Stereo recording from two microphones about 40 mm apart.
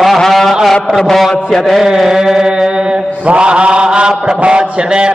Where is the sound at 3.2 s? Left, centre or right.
Right.